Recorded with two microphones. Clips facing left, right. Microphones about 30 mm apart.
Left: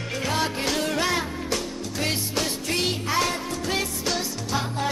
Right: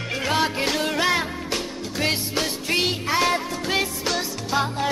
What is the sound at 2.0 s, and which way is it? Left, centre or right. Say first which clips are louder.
Music: right 3 dB; right.